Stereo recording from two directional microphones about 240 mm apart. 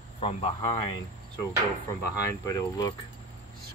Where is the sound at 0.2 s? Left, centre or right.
Left.